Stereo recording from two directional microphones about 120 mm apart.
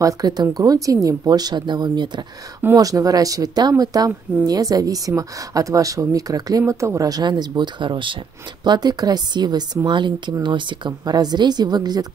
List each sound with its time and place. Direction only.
0.0 s speech: 30° right (ahead or behind)
2.6 s a woman's voice: 25° right (ahead or behind)